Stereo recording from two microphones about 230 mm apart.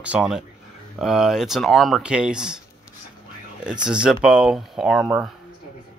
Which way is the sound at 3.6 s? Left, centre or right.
Centre.